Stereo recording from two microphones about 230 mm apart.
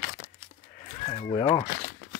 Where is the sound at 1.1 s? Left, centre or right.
Left.